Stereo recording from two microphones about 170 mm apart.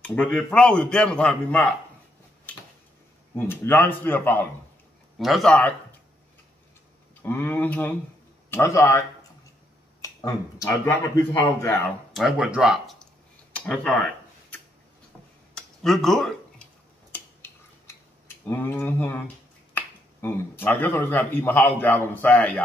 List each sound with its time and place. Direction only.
0.0 s speech: 5° left (ahead or behind)
3.3 s speech: 10° left (ahead or behind)
5.2 s speech: centre (ahead or behind)
7.2 s speech: 10° left (ahead or behind)
10.0 s speech: 20° left (ahead or behind)
12.2 s speech: 5° right (ahead or behind)
15.5 s a sound: centre (ahead or behind)
17.1 s a sound: 15° left (ahead or behind)
18.5 s speech: 10° left (ahead or behind)